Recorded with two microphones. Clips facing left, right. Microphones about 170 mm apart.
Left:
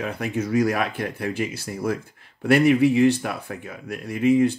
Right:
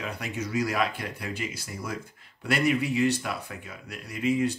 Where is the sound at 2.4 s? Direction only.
55° left (ahead or behind).